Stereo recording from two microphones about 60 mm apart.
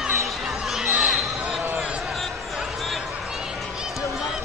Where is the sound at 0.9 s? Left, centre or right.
Centre.